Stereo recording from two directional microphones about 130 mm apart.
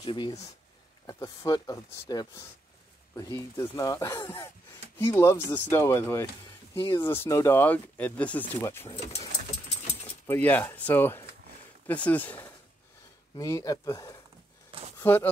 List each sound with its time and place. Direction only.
0.0 s speech: 40° left (ahead or behind)
1.0 s speech: 25° left (ahead or behind)
6.7 s speech: 40° left (ahead or behind)
7.0 s speech: 15° left (ahead or behind)
10.2 s speech: 15° left (ahead or behind)
13.4 s speech: 25° left (ahead or behind)
15.0 s speech: 15° left (ahead or behind)